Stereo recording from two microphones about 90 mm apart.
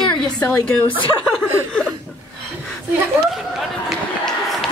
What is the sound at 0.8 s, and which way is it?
Speech, 65° left (ahead or behind).